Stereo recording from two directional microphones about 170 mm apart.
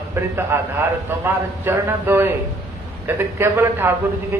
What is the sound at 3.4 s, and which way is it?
Speech, 15° right (ahead or behind).